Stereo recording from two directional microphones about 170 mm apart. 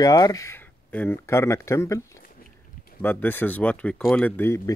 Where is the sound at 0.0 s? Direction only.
20° left (ahead or behind).